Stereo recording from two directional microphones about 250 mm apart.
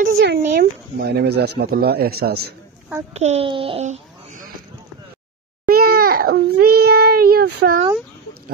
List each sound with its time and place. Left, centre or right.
0.0 s speech: right
3.1 s a child's voice: right
5.7 s a child's voice: right